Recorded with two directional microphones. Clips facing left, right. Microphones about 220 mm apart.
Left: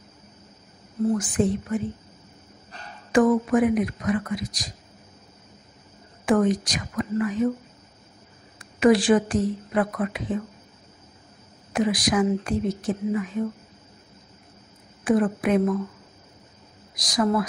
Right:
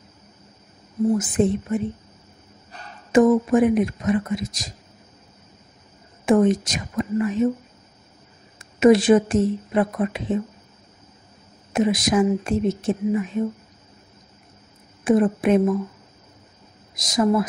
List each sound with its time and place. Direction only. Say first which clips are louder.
1.1 s a woman's voice: right 3 dB; 25° right (ahead or behind)
3.1 s a woman's voice: right 3 dB; 25° right (ahead or behind)
6.2 s a woman's voice: right 3 dB; 25° right (ahead or behind)
8.5 s a woman's voice: right 3 dB; 25° right (ahead or behind)
11.7 s a woman's voice: right 3 dB; 25° right (ahead or behind)
15.0 s a woman's voice: right 3 dB; 25° right (ahead or behind)
16.9 s a woman's voice: right 3 dB; 25° right (ahead or behind)